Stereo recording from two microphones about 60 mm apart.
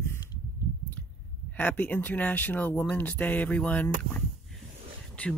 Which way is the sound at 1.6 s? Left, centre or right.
Left.